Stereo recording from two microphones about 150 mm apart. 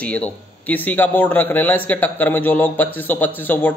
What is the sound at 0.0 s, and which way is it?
Speech, 10° left (ahead or behind).